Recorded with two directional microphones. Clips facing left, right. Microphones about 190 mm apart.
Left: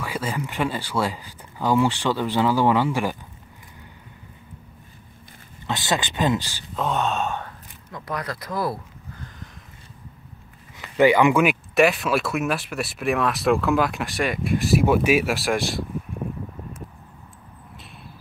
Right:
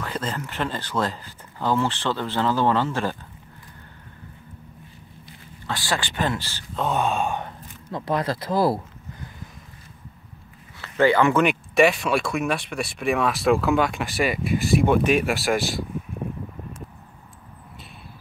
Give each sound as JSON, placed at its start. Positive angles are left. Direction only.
{"t": 0.0, "sound": "speech", "side_deg": 10}
{"t": 5.7, "sound": "speech", "side_deg": 20}
{"t": 6.7, "sound": "gasp", "side_deg": -5}
{"t": 7.9, "sound": "speech", "side_deg": -25}
{"t": 10.8, "sound": "speech", "side_deg": 15}